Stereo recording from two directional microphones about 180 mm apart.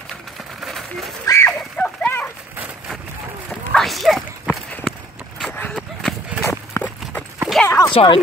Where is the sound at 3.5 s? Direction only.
5° left (ahead or behind).